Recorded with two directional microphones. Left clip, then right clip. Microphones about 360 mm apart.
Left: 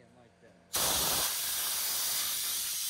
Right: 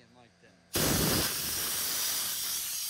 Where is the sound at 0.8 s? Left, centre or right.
Right.